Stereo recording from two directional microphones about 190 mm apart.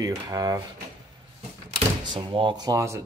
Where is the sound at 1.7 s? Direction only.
25° right (ahead or behind).